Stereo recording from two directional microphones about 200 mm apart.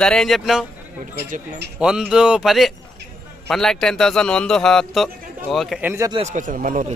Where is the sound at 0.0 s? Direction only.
5° left (ahead or behind).